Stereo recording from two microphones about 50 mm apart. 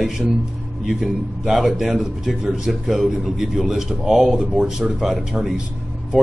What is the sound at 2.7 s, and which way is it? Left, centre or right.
A man's voice, centre.